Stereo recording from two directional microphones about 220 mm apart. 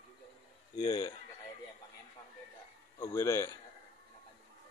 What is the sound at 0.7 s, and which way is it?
Speech, 20° left (ahead or behind).